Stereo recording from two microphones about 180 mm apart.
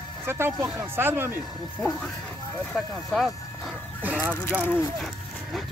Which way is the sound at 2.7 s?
Centre (ahead or behind).